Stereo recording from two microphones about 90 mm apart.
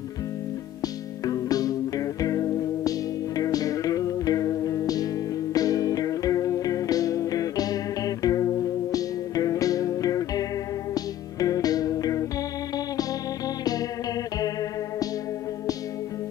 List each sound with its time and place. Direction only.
1.2 s music: 40° left (ahead or behind)